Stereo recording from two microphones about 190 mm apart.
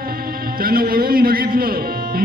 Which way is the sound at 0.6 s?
50° right (ahead or behind).